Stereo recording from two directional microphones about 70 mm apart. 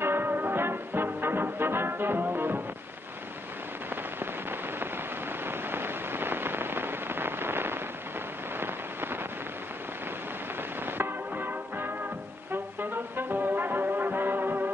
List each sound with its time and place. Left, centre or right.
0.0 s music: right
5.4 s rain: right
8.5 s rain on surface: right
10.9 s music: right
12.9 s foghorn: right